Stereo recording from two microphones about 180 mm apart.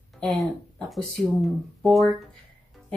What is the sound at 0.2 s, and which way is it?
Speech, 5° left (ahead or behind).